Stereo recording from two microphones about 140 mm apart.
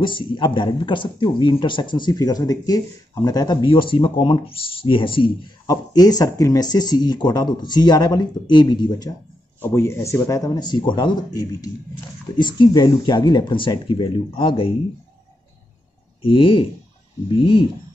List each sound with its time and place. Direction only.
0.0 s speech: 35° left (ahead or behind)
9.6 s speech: 20° left (ahead or behind); by 14.7 s 40° left (ahead or behind)
16.2 s speech: 35° left (ahead or behind)